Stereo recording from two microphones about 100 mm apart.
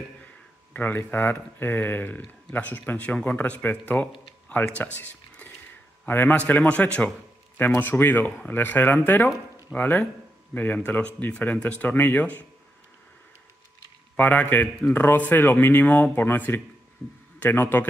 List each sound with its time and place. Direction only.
0.7 s speech: 20° left (ahead or behind)
4.7 s a sound: 15° left (ahead or behind)
6.0 s speech: 15° left (ahead or behind)
14.1 s speech: 15° left (ahead or behind)